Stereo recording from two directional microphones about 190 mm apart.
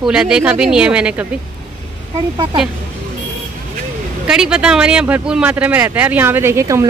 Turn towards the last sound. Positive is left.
turn(degrees=-15)  # may be behind; listen again after turning